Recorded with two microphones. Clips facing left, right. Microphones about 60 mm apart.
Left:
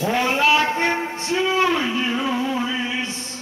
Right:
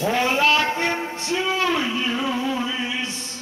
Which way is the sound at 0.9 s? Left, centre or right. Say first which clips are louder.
Left 2 dB; centre.